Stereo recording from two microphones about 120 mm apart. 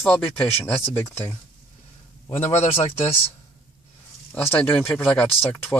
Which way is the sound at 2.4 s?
65° left (ahead or behind).